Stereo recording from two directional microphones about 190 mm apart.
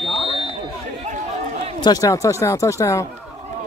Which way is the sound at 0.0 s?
25° left (ahead or behind).